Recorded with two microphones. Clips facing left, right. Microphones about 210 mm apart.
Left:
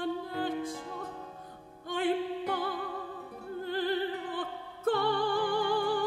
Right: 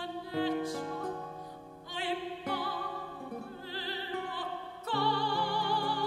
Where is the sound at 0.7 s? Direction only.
50° right (ahead or behind).